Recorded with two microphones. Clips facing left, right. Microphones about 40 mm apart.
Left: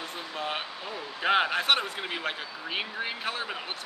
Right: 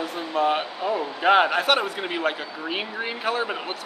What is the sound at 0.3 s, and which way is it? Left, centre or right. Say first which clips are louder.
Speech: right 12 dB; centre.